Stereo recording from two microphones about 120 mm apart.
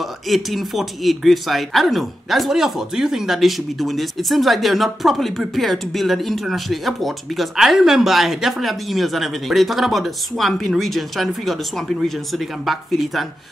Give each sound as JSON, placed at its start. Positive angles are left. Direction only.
{"t": 0.0, "sound": "speech", "side_deg": 0}